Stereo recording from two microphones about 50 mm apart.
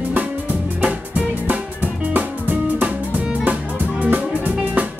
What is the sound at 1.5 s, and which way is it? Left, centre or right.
Music, right.